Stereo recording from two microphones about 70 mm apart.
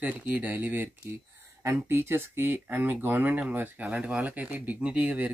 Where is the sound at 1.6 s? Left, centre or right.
Right.